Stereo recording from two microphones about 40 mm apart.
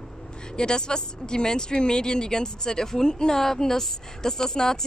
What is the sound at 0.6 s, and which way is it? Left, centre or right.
Speech, centre.